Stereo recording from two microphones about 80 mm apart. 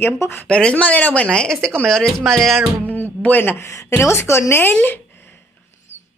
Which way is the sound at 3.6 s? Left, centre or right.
Left.